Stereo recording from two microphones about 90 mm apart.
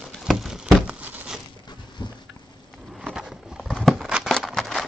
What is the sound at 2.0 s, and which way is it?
Rain, 50° left (ahead or behind).